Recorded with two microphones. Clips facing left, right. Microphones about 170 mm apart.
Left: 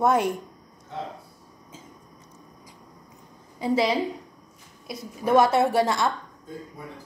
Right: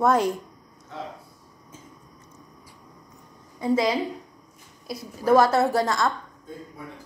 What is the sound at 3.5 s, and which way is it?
Speech, 30° left (ahead or behind).